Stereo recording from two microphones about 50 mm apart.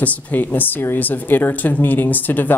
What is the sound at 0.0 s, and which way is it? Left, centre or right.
A woman's voice, left.